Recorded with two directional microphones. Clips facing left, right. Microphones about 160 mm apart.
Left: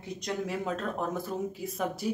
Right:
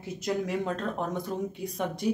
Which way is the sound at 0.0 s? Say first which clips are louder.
Right 3 dB; centre (ahead or behind).